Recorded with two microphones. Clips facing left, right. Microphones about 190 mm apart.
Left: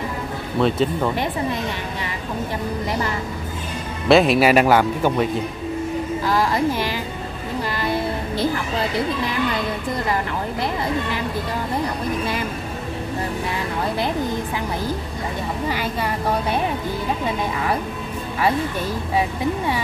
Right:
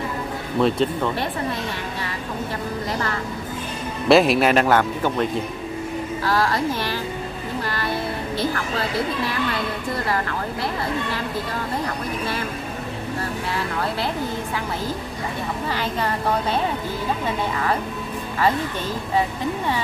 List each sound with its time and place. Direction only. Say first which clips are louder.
0.6 s speech: left 1 dB; centre (ahead or behind)
2.9 s speech: left 2 dB; 15° left (ahead or behind)
4.1 s speech: left 1 dB; centre (ahead or behind)
15.7 s speech: even; 10° left (ahead or behind)